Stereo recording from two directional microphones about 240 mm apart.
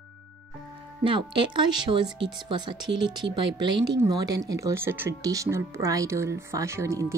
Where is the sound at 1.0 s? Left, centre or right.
Centre.